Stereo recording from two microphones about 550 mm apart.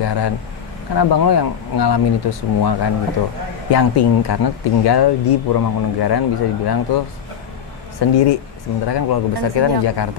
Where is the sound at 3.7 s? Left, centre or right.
Left.